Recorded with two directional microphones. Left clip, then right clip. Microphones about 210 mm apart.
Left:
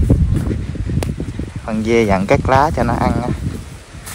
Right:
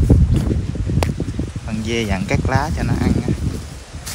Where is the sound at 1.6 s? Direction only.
5° right (ahead or behind).